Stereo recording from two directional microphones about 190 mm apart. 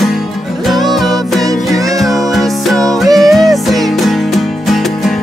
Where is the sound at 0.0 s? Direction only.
Centre (ahead or behind).